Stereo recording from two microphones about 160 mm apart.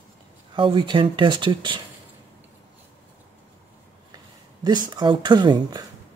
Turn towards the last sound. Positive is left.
turn(degrees=-25)  # may be behind; listen again after turning